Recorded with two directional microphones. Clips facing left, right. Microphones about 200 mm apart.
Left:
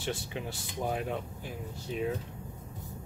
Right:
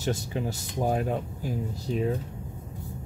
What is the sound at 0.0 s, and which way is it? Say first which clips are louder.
Speech: right 6 dB; 40° right (ahead or behind).